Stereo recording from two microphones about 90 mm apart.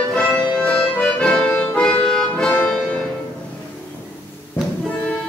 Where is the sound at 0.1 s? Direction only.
10° left (ahead or behind).